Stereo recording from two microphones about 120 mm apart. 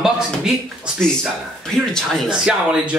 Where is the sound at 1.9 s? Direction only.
Centre (ahead or behind).